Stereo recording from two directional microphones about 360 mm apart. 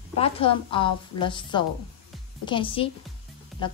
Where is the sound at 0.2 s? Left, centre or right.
Centre.